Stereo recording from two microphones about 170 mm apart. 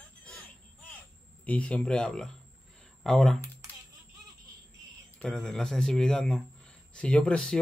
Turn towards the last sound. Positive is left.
turn(degrees=5)  # may be behind; listen again after turning